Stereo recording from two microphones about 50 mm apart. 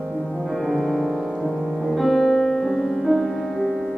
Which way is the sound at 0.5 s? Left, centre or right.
Centre.